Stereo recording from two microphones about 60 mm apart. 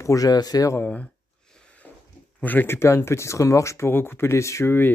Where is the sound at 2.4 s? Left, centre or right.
Left.